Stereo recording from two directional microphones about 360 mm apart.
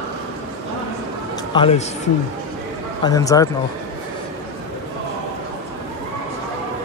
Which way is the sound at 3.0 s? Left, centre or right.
Centre.